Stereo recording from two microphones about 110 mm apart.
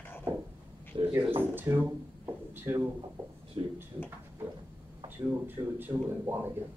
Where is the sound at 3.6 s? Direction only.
50° right (ahead or behind).